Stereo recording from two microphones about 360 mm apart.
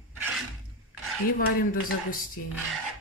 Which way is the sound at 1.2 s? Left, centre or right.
Left.